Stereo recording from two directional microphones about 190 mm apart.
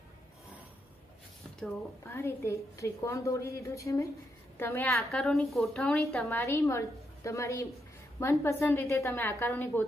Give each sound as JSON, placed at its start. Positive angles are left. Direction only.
{"t": 2.0, "sound": "a woman's voice", "side_deg": 15}
{"t": 4.8, "sound": "a woman's voice", "side_deg": 0}
{"t": 6.2, "sound": "a woman's voice", "side_deg": 15}